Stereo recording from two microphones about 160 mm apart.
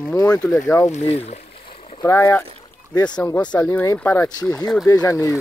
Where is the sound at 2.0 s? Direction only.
15° left (ahead or behind).